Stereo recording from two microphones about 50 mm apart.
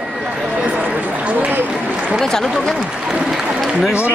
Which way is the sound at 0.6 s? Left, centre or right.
Right.